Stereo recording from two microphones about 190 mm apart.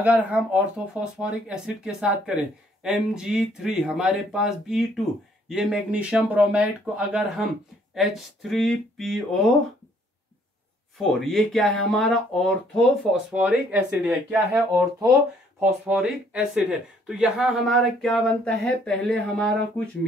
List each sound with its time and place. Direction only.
0.0 s speech: 5° right (ahead or behind)
11.0 s speech: centre (ahead or behind)
14.7 s speech: 15° right (ahead or behind)
15.9 s speech: 5° right (ahead or behind)